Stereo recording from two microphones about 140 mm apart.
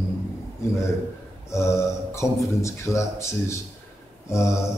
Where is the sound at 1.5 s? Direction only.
20° left (ahead or behind).